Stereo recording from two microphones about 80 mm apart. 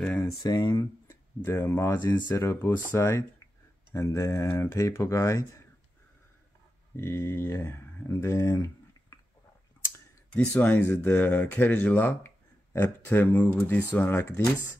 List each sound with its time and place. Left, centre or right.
0.5 s speech: left
1.0 s tick-tock: left
2.3 s speech: left
7.0 s speech: left
10.3 s speech: left